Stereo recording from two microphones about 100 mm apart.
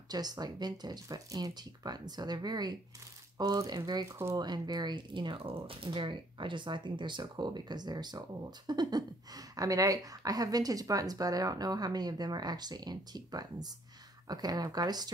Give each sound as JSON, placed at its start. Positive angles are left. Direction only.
{"t": 0.1, "sound": "speech", "side_deg": -40}